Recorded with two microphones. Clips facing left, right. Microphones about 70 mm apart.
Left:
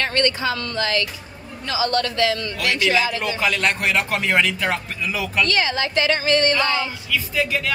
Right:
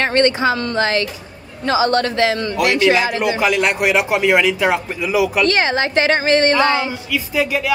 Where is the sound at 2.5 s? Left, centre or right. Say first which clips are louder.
Right 6 dB; right.